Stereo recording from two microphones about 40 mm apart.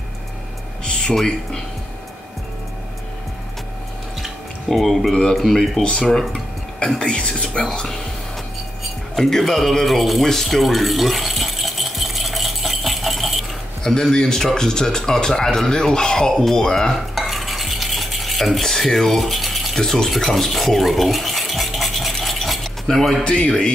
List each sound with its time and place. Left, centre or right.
0.8 s music: centre
1.1 s speech: centre
4.6 s speech: centre
7.1 s speech: left; by 10.3 s centre
10.3 s a sound: centre
13.8 s speech: centre
17.1 s stir: centre
22.1 s mechanisms: centre
23.2 s speech: left